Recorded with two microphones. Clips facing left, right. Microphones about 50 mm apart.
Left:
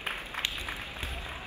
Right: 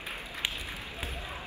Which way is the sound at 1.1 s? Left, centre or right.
Left.